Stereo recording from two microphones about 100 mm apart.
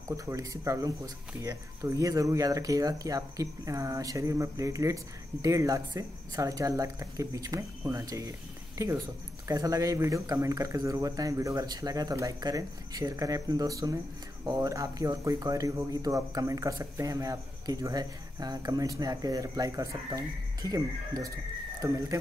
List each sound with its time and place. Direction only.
0.2 s speech: 35° right (ahead or behind)